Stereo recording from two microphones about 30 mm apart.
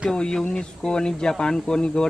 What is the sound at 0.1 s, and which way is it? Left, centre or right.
Speech, left.